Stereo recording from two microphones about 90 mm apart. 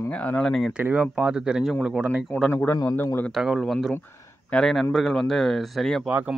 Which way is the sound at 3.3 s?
Centre (ahead or behind).